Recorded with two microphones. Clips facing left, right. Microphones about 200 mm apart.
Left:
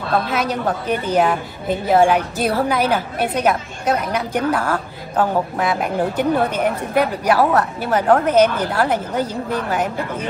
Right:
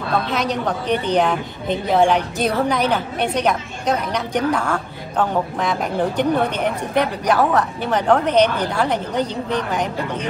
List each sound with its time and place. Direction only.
0.3 s a woman's voice: 5° left (ahead or behind)